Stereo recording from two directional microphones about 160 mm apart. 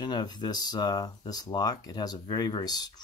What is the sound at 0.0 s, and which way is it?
Speech, 25° left (ahead or behind).